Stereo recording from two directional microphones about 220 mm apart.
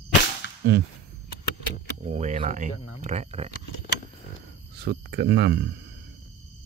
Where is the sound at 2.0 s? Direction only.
30° right (ahead or behind).